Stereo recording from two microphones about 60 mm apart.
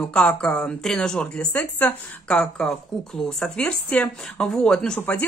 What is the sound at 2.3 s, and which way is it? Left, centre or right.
Speech, centre.